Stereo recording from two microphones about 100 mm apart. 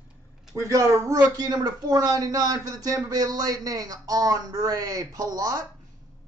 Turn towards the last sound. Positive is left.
turn(degrees=-40)  # may be behind; listen again after turning